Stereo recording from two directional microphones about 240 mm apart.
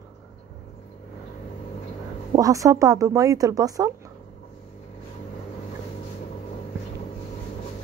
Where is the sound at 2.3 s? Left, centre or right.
Centre.